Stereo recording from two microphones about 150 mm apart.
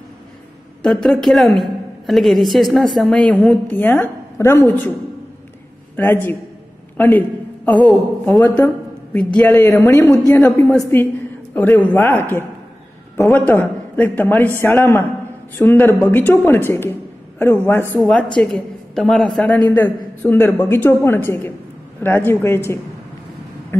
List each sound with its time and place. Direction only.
0.8 s a woman's voice: 5° left (ahead or behind)
5.9 s a woman's voice: 15° left (ahead or behind)
9.6 s a man's voice: 20° left (ahead or behind)
10.4 s a woman's voice: 5° left (ahead or behind)
17.9 s a woman's voice: 5° left (ahead or behind)
23.7 s a woman's voice: 15° left (ahead or behind)